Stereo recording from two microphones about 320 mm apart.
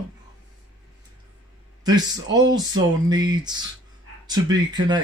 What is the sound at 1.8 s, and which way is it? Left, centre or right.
A man's voice, centre.